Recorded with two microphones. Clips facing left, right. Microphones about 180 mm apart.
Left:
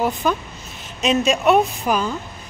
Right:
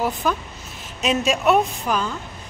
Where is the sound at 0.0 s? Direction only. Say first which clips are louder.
Left 2 dB; centre (ahead or behind).